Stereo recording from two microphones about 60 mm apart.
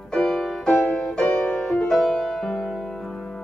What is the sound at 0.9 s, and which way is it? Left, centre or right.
Music, left.